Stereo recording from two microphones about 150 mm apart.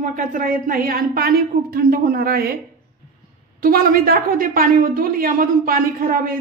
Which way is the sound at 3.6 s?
70° right (ahead or behind).